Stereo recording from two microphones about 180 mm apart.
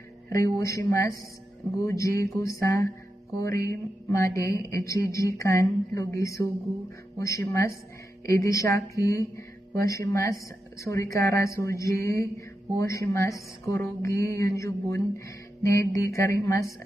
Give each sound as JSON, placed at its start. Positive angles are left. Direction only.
{"t": 0.3, "sound": "speech", "side_deg": 15}